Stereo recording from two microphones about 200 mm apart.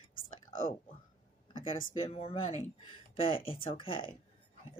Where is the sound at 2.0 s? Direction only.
30° left (ahead or behind).